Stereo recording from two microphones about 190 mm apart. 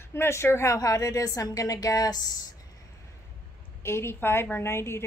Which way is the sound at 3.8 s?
15° left (ahead or behind).